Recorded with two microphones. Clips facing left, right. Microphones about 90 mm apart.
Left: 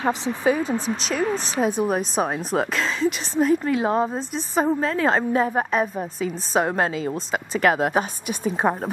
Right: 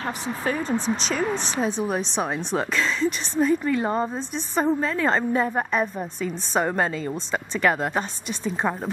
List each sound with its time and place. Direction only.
0.0 s a woman's voice: 15° left (ahead or behind)
8.6 s a woman's voice: 25° left (ahead or behind)